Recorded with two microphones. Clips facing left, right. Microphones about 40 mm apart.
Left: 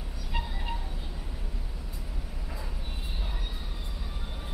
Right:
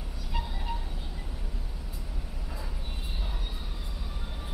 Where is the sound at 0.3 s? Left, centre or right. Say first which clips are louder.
Even; centre.